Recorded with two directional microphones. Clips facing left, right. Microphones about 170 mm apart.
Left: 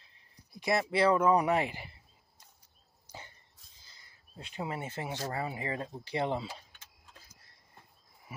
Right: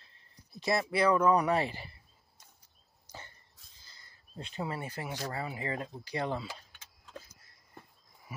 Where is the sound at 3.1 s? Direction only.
10° left (ahead or behind).